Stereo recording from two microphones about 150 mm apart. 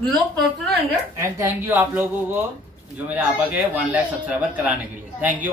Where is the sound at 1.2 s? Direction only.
20° right (ahead or behind).